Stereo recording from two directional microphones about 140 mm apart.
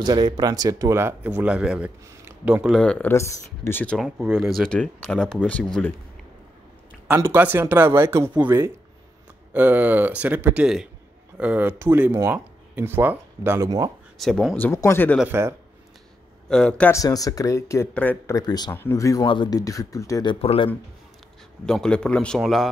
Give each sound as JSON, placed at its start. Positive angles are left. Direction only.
{"t": 0.0, "sound": "speech", "side_deg": -30}
{"t": 2.8, "sound": "a man's voice", "side_deg": 5}
{"t": 3.1, "sound": "a man's voice", "side_deg": 20}
{"t": 4.3, "sound": "speech", "side_deg": 0}
{"t": 7.2, "sound": "speech", "side_deg": -15}
{"t": 14.1, "sound": "speech", "side_deg": 0}
{"t": 14.7, "sound": "a man's voice", "side_deg": 20}
{"t": 15.2, "sound": "speech", "side_deg": -20}
{"t": 16.4, "sound": "a man's voice", "side_deg": 5}
{"t": 16.9, "sound": "a man's voice", "side_deg": 25}
{"t": 18.3, "sound": "speech", "side_deg": 30}
{"t": 19.2, "sound": "speech", "side_deg": 35}
{"t": 20.4, "sound": "speech", "side_deg": 40}
{"t": 21.6, "sound": "a man's voice", "side_deg": 5}